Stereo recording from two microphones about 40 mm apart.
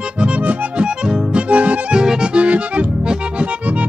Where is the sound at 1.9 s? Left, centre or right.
Centre.